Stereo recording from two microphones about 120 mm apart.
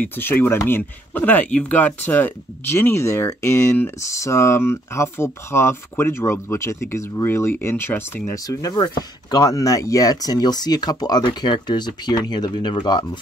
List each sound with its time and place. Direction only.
0.0 s speech: 15° left (ahead or behind)
8.5 s speech: 30° left (ahead or behind)